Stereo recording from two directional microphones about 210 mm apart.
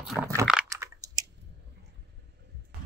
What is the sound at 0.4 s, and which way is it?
Biting, 5° right (ahead or behind).